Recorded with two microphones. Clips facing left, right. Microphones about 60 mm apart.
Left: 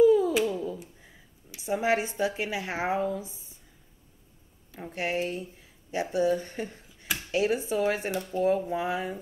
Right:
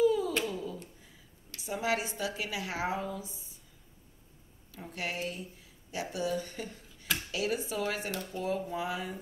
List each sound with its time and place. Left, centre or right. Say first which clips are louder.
0.0 s cat: left 7 dB; left
1.6 s a woman's voice: left 6 dB; left
4.7 s a woman's voice: left 7 dB; left